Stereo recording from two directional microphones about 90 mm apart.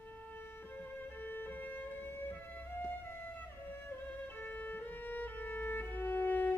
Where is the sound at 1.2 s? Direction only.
20° left (ahead or behind).